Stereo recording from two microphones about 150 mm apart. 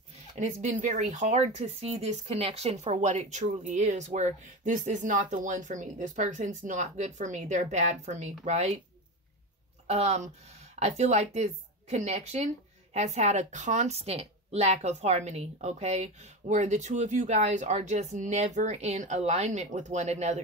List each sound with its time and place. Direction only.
0.4 s a woman's voice: 55° right (ahead or behind)
9.8 s a woman's voice: 45° right (ahead or behind)